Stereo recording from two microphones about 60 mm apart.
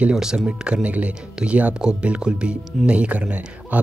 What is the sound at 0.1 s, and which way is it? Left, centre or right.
Speech, centre.